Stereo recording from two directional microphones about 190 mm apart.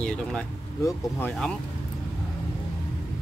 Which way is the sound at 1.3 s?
5° left (ahead or behind).